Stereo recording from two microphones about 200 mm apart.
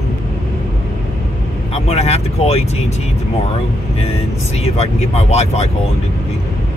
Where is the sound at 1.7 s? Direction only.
30° left (ahead or behind).